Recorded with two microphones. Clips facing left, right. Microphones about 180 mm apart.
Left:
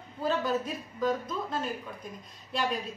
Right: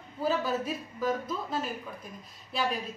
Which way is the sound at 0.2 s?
5° right (ahead or behind).